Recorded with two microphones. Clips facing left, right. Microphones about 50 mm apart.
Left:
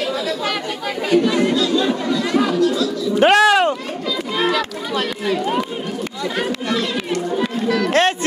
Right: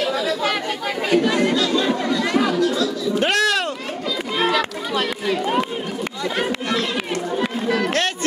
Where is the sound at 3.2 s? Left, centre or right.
Left.